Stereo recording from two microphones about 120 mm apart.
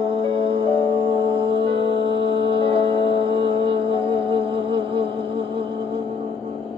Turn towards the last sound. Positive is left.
turn(degrees=-45)  # may be behind; listen again after turning